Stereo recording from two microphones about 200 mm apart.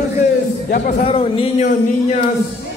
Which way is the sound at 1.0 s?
30° left (ahead or behind).